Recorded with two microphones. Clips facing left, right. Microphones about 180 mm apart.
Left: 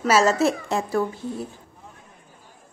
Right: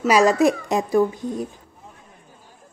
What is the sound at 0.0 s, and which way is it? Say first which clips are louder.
Speech: right 3 dB; 15° right (ahead or behind).